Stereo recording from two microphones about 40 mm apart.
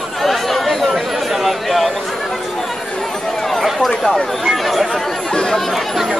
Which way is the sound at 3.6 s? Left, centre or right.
Centre.